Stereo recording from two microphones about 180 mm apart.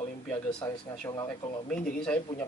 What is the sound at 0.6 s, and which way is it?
Speech, 15° left (ahead or behind).